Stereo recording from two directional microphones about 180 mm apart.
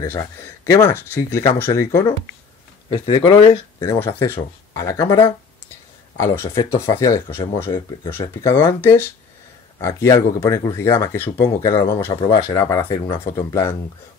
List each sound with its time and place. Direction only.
0.0 s speech: 15° left (ahead or behind)
12.5 s speech: 15° left (ahead or behind)